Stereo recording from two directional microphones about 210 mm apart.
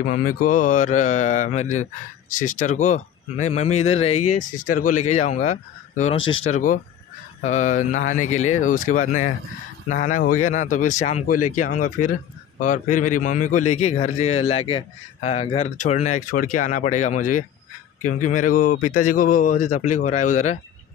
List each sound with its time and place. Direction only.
0.0 s a man's voice: 40° left (ahead or behind)